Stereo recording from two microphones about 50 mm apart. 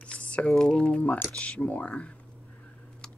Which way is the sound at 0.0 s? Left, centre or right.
Left.